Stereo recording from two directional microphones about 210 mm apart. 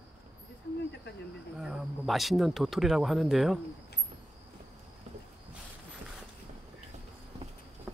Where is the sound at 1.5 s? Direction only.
Centre (ahead or behind).